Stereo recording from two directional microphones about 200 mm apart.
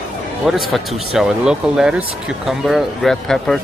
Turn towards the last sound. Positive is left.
turn(degrees=0)  # may be behind; listen again after turning